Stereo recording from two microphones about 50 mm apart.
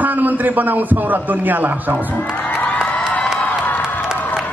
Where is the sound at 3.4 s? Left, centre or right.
Left.